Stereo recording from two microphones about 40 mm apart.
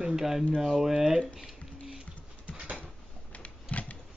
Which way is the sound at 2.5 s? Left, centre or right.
Right.